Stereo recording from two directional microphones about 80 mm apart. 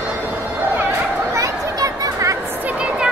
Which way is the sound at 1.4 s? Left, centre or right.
Right.